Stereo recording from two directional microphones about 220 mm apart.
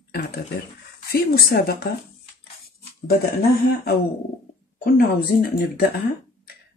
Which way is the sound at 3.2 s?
45° left (ahead or behind).